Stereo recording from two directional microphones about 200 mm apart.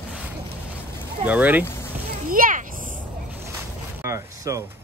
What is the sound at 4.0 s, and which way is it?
Speech, 15° right (ahead or behind).